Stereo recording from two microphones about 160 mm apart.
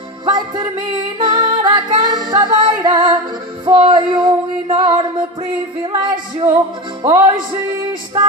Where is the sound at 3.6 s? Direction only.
30° right (ahead or behind).